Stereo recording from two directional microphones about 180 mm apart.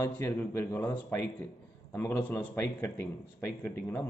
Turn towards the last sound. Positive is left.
turn(degrees=10)  # may be behind; listen again after turning